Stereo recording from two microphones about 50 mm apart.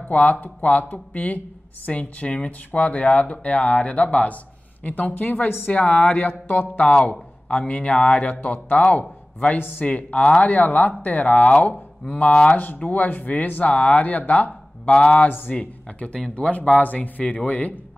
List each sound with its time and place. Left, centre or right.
0.1 s speech: left
6.8 s speech: left
9.6 s speech: left
9.8 s speech: left
12.8 s speech: left
15.1 s speech: left
15.5 s speech: left